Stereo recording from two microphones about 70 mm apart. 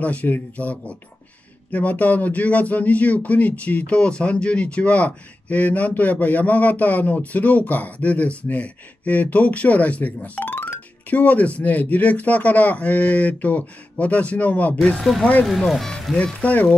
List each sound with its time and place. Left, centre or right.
0.0 s speech: left
15.0 s speech: centre
16.2 s speech: centre